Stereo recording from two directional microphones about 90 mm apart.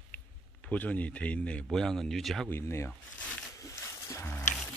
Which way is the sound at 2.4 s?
30° left (ahead or behind).